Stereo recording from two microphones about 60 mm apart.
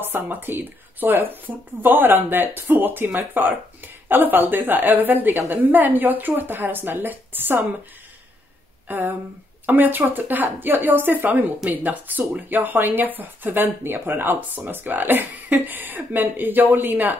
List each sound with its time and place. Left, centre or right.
0.0 s speech: right
8.8 s speech: right